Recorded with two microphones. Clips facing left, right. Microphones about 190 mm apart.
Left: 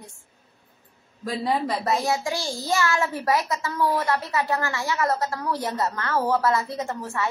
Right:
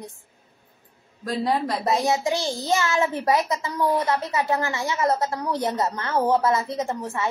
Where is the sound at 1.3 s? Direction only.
Centre (ahead or behind).